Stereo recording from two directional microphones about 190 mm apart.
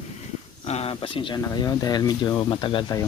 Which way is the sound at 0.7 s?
30° left (ahead or behind).